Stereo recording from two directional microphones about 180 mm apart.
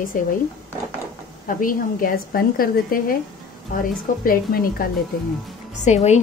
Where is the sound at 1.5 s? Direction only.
50° left (ahead or behind).